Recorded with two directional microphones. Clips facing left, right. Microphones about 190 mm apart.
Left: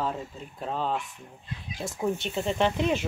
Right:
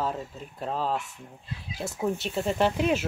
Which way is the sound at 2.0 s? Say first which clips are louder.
Even; 5° right (ahead or behind).